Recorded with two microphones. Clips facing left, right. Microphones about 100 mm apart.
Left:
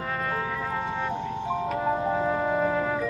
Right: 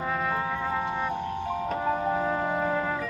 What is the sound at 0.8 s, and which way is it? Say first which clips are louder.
Vehicle: even; 15° right (ahead or behind).